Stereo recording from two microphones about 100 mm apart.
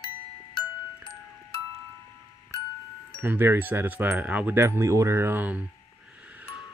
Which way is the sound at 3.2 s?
20° right (ahead or behind).